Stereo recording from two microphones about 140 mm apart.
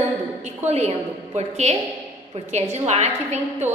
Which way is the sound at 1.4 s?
50° right (ahead or behind).